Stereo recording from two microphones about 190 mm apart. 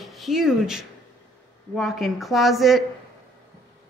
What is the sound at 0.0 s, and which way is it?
Speech, centre (ahead or behind).